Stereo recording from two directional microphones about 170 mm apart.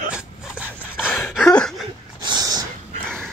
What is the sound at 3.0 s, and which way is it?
Dog, 5° left (ahead or behind).